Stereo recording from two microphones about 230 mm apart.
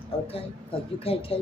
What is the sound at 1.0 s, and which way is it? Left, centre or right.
Speech, left.